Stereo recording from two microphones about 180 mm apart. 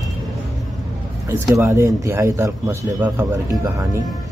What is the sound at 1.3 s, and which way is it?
Speech, 15° right (ahead or behind).